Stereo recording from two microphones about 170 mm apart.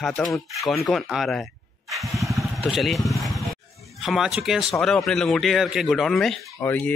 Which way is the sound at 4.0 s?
Centre (ahead or behind).